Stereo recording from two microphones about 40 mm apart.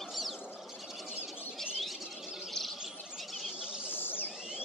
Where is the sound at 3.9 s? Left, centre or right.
Left.